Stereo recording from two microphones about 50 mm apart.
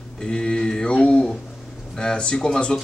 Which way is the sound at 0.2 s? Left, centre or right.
Centre.